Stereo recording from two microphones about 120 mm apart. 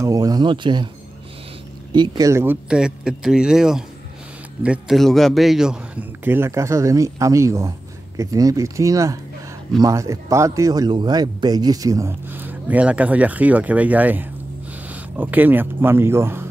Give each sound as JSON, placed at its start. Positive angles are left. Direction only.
{"t": 0.0, "sound": "speech", "side_deg": -30}
{"t": 2.0, "sound": "speech", "side_deg": -30}
{"t": 2.4, "sound": "a man's voice", "side_deg": -10}
{"t": 6.2, "sound": "speech", "side_deg": -20}